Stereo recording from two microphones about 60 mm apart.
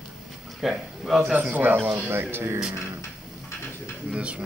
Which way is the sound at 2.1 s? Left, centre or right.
Right.